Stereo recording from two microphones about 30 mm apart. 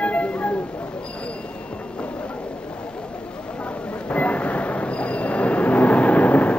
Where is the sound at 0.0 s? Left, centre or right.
Left.